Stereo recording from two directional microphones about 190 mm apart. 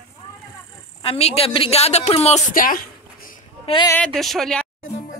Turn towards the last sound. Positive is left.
turn(degrees=5)  # may be behind; listen again after turning